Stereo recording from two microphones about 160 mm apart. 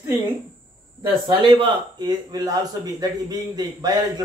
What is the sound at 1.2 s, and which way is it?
Speech, 30° right (ahead or behind).